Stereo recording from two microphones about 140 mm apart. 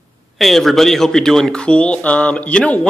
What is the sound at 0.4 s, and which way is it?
Speech, centre (ahead or behind).